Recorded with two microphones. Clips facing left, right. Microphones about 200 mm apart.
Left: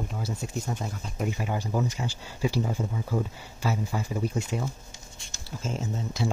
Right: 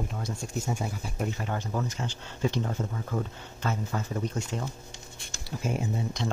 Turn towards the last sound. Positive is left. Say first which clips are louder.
# right 2 dB
turn(degrees=-15)  # may be behind; listen again after turning